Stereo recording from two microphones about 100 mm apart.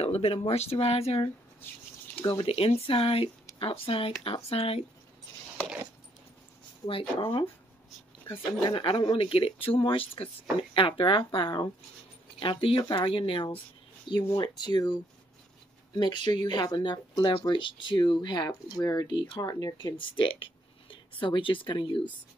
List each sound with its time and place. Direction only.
0.0 s speech: 80° left
2.2 s speech: 70° left (ahead or behind)
6.9 s speech: 60° left (ahead or behind)
8.6 s speech: 55° left (ahead or behind)
14.0 s speech: 50° left (ahead or behind)
20.0 s speech: 60° left (ahead or behind)